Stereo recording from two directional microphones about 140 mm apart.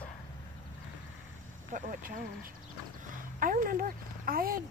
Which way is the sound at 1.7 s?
80° right.